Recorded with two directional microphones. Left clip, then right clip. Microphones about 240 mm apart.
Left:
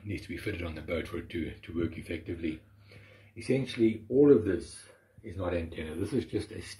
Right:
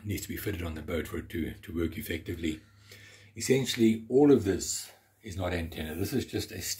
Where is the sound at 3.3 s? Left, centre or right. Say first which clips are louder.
Right 3 dB; right.